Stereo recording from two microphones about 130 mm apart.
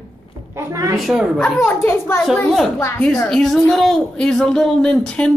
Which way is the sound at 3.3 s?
Centre (ahead or behind).